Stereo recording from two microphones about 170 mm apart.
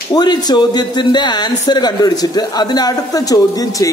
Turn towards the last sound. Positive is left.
turn(degrees=20)  # may be behind; listen again after turning